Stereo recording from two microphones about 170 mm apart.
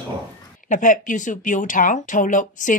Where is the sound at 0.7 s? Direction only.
50° left (ahead or behind).